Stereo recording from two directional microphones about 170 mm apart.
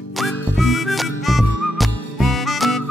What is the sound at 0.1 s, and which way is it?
Music, centre (ahead or behind).